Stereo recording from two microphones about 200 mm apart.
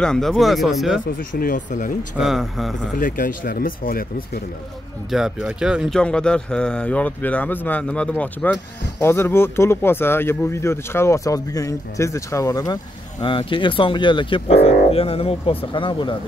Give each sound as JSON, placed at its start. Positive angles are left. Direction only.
{"t": 0.0, "sound": "speech", "side_deg": 0}
{"t": 1.0, "sound": "speech", "side_deg": 45}
{"t": 2.1, "sound": "speech", "side_deg": 0}
{"t": 3.0, "sound": "speech", "side_deg": 40}
{"t": 5.1, "sound": "speech", "side_deg": 0}